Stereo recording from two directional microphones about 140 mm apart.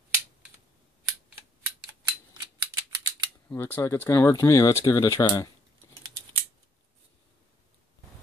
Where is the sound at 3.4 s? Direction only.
15° left (ahead or behind).